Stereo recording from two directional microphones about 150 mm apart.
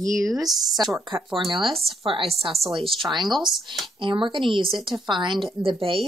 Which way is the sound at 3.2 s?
Centre (ahead or behind).